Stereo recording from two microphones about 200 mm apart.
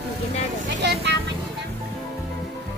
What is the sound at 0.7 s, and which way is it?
Speech, 60° right (ahead or behind).